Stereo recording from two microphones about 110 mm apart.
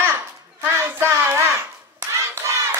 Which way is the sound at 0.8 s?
25° right (ahead or behind).